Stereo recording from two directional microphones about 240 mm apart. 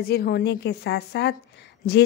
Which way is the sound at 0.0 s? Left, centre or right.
Left.